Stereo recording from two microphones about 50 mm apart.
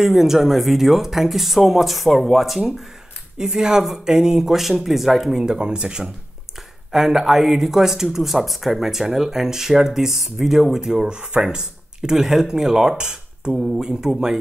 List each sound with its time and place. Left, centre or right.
0.0 s speech: centre
3.3 s speech: centre
5.4 s speech: centre